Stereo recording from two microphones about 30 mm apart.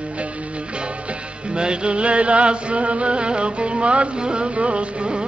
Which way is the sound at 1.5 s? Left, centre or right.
Right.